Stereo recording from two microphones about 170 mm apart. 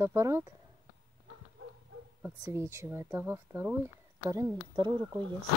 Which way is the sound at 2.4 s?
15° right (ahead or behind).